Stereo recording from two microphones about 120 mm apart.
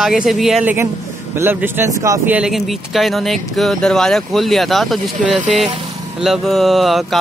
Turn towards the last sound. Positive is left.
turn(degrees=0)  # may be behind; listen again after turning